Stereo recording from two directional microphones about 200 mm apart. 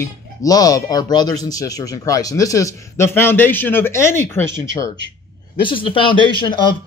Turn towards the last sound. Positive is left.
turn(degrees=20)  # may be behind; listen again after turning